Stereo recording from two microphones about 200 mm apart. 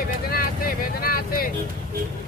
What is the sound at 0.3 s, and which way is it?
Vehicle, 45° left (ahead or behind).